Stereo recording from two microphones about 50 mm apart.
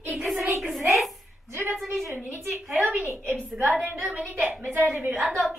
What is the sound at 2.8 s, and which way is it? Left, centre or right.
A woman's voice, right.